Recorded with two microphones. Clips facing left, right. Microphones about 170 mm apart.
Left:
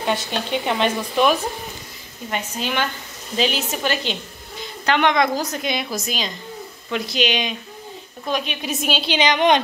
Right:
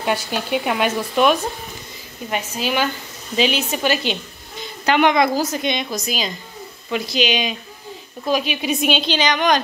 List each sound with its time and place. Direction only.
0.0 s speech: 10° right (ahead or behind)
2.3 s a woman's voice: 5° right (ahead or behind)
9.2 s a woman's voice: 25° left (ahead or behind)